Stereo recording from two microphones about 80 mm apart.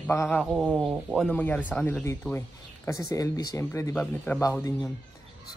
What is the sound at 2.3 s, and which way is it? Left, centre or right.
Speech, left.